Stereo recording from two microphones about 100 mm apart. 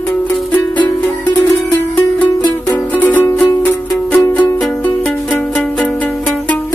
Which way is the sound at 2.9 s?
15° left (ahead or behind).